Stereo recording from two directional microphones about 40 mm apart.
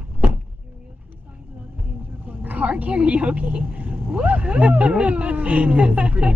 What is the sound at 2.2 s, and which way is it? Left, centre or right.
Vehicle, right.